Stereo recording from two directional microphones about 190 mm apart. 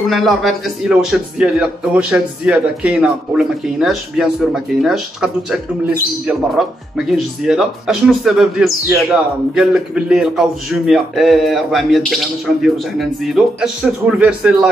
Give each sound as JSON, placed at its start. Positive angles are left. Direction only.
{"t": 0.1, "sound": "a man's voice", "side_deg": 0}